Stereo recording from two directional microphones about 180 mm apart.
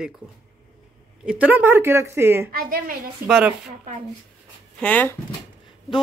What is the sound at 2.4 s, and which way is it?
Speech, 50° right (ahead or behind).